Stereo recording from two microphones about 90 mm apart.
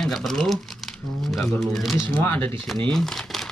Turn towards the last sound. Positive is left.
turn(degrees=5)  # may be behind; listen again after turning